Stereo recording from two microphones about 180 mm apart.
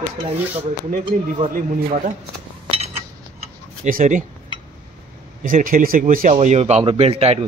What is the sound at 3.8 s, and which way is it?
Speech, 45° right (ahead or behind).